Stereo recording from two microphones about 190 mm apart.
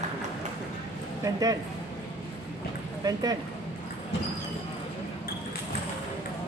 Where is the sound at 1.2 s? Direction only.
20° right (ahead or behind).